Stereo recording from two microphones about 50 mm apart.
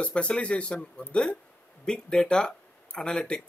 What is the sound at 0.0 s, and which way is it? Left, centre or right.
Speech, left.